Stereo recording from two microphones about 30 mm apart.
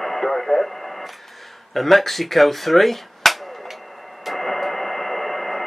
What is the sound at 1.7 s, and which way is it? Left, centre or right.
Speech, centre.